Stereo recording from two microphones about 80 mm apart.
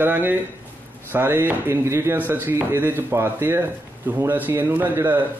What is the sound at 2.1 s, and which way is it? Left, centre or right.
Speech, right.